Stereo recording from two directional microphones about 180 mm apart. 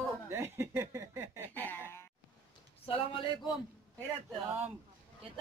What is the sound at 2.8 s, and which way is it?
Speech, 30° left (ahead or behind).